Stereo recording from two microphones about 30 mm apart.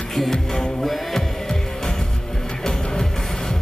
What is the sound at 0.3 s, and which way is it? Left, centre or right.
Music, centre.